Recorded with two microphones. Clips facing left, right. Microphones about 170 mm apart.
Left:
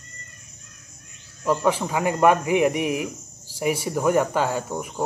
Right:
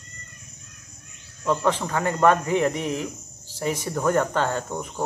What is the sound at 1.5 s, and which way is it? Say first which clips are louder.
Speech: left 1 dB; 10° left (ahead or behind).